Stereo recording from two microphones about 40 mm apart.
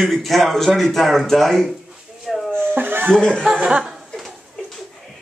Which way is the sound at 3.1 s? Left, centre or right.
Left.